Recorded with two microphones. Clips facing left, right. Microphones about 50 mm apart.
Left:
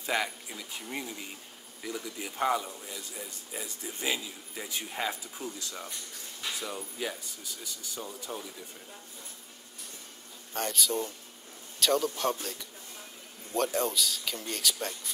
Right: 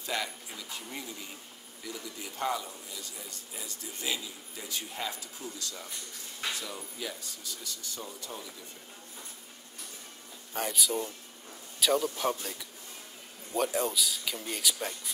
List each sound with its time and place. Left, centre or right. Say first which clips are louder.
0.0 s a sound: left 4 dB; left
0.8 s a man's voice: left 3 dB; left
7.6 s speech: left 2 dB; centre
10.5 s speech: left 1 dB; centre